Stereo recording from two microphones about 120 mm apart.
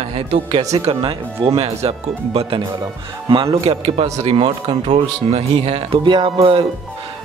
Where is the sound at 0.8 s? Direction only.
50° right (ahead or behind).